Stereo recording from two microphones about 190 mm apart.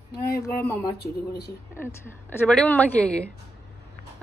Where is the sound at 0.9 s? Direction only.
55° left (ahead or behind).